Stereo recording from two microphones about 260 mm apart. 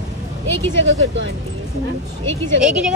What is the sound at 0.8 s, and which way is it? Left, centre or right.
Speech, right.